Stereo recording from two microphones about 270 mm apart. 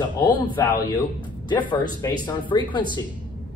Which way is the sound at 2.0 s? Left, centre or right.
Centre.